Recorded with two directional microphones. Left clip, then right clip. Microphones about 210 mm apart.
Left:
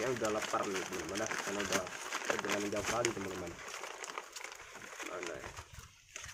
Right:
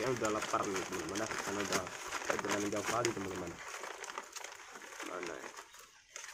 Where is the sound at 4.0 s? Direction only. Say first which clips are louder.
Even; 15° left (ahead or behind).